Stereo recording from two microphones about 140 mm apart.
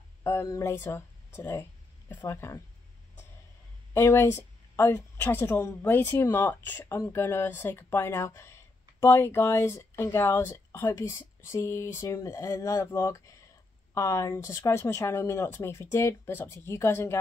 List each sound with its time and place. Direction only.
0.2 s speech: 20° left (ahead or behind)
3.9 s a woman's voice: 20° left (ahead or behind)